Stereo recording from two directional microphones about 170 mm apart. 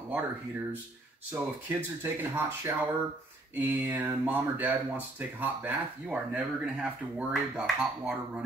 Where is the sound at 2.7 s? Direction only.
15° right (ahead or behind).